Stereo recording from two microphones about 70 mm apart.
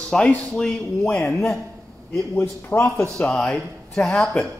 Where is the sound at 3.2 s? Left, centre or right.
Centre.